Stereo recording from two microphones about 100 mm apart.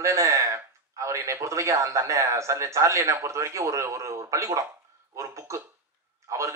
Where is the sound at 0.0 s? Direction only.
30° right (ahead or behind).